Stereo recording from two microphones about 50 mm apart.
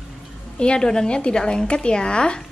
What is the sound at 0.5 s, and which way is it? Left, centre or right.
A woman's voice, centre.